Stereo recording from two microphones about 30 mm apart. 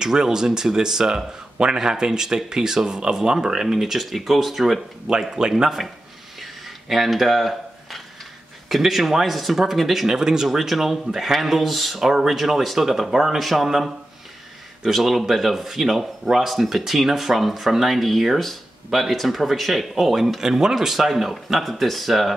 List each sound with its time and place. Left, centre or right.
0.0 s speech: right
4.0 s speech: centre
6.4 s a sound: centre
8.6 s speech: centre
10.0 s speech: centre
12.0 s speech: centre
15.0 s speech: centre
20.3 s speech: centre